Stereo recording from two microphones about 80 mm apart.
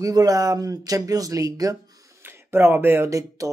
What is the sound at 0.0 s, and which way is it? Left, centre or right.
Speech, right.